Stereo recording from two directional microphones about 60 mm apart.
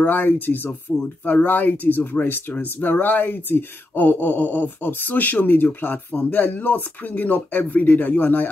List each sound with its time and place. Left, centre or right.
0.0 s speech: left